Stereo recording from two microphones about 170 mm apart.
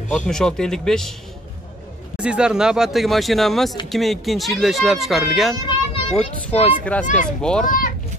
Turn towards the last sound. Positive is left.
turn(degrees=55)  # may be behind; listen again after turning